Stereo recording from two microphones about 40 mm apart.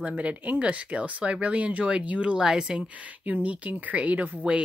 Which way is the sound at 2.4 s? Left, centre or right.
Centre.